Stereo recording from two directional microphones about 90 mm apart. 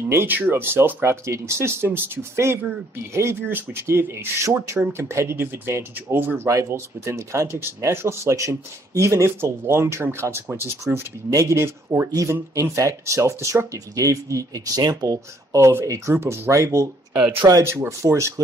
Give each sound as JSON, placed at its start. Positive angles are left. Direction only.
{"t": 0.1, "sound": "speech", "side_deg": -25}
{"t": 4.5, "sound": "speech", "side_deg": -40}